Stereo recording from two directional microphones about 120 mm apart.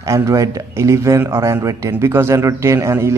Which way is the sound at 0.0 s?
25° right (ahead or behind).